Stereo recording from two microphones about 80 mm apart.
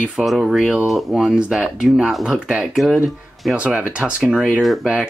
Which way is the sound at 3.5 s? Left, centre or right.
Centre.